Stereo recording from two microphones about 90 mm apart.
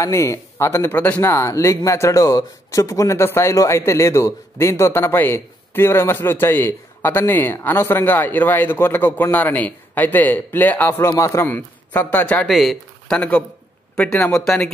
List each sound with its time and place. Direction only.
0.0 s speech: 35° left (ahead or behind)
1.3 s speech: 30° left (ahead or behind)
11.4 s speech: 20° left (ahead or behind)
12.4 s speech: centre (ahead or behind)
13.9 s a man's voice: 15° left (ahead or behind)
14.4 s speech: 5° left (ahead or behind)